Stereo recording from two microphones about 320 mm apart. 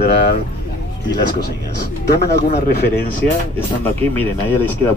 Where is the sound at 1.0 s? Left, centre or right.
Left.